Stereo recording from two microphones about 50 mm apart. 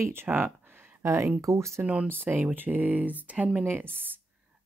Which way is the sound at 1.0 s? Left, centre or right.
Right.